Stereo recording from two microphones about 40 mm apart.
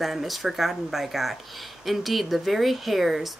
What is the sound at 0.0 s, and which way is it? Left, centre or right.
Speech, centre.